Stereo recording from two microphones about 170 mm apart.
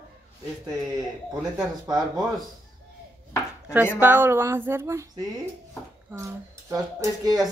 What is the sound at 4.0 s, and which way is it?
A woman's voice, 10° right (ahead or behind).